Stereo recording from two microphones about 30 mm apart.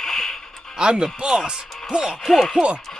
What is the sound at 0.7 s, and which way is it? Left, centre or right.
Speech, right.